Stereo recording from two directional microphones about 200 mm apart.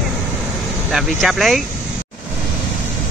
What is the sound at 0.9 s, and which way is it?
Speech, centre (ahead or behind).